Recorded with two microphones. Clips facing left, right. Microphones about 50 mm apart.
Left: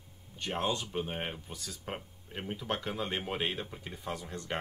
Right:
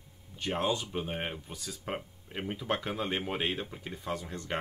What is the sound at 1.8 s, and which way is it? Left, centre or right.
Speech, centre.